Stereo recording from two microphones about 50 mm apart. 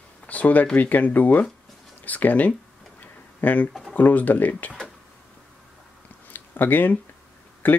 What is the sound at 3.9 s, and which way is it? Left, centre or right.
Speech, left.